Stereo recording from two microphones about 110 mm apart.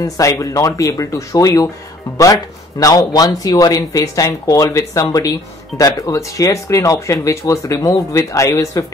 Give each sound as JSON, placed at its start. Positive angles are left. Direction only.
{"t": 0.0, "sound": "speech", "side_deg": 30}
{"t": 2.8, "sound": "speech", "side_deg": 35}